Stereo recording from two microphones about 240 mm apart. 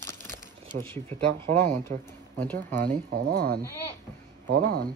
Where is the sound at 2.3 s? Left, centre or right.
Centre.